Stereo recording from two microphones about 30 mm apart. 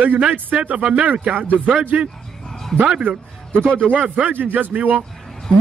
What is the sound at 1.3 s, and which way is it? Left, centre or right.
Speech, right.